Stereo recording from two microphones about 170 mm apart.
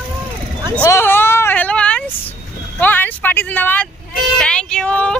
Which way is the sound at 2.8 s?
10° left (ahead or behind).